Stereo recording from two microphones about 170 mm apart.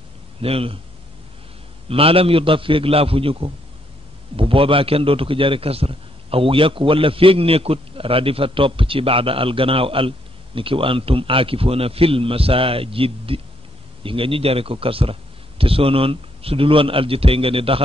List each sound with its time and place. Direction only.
0.4 s a man's voice: 35° right (ahead or behind)
1.9 s a man's voice: 35° right (ahead or behind)